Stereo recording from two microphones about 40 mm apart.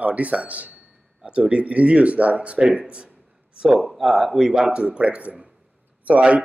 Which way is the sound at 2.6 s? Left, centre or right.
Right.